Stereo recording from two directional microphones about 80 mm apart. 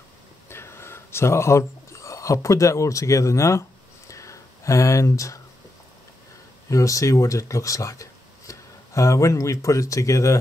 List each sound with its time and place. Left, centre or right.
0.5 s speech: left
4.1 s a sound: left
6.7 s speech: left